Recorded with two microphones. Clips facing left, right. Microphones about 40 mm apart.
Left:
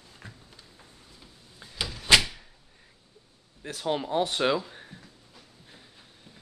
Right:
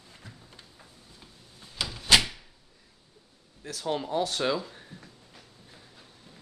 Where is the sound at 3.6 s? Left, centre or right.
Left.